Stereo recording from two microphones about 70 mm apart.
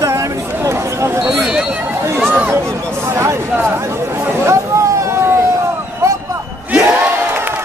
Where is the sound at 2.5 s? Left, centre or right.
Right.